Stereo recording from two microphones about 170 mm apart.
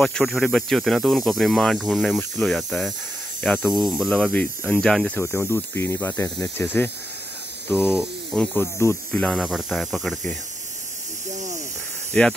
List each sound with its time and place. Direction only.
0.0 s snake: centre (ahead or behind)
3.4 s speech: 10° left (ahead or behind)
8.0 s speech: centre (ahead or behind)
8.5 s snake: 15° left (ahead or behind)
12.1 s speech: 5° left (ahead or behind)